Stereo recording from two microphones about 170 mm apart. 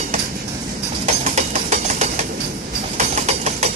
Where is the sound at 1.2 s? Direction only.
45° right (ahead or behind).